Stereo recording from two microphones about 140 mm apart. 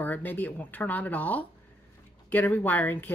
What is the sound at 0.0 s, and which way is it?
Speech, 15° left (ahead or behind).